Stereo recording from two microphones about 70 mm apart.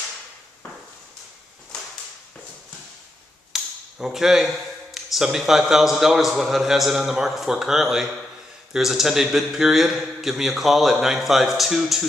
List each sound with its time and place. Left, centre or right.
3.5 s a man's voice: centre